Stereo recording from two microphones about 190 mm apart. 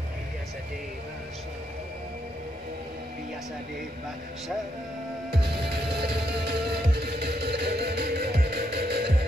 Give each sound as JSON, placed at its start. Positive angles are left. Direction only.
{"t": 5.3, "sound": "music", "side_deg": -60}